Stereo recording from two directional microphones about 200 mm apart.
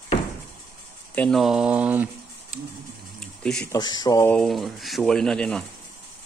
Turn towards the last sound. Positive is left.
turn(degrees=5)  # may be behind; listen again after turning